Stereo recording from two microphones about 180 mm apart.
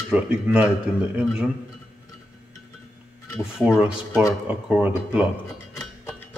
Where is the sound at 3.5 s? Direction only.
5° right (ahead or behind).